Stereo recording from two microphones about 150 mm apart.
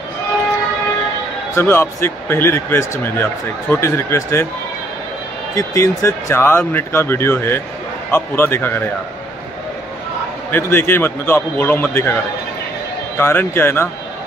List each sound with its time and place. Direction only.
1.5 s speech: 15° left (ahead or behind)
5.5 s speech: 20° left (ahead or behind)
10.5 s speech: 15° left (ahead or behind)
13.2 s speech: 15° left (ahead or behind)